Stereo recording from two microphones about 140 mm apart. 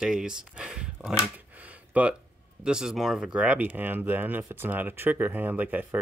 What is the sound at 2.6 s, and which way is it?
Speech, 5° right (ahead or behind).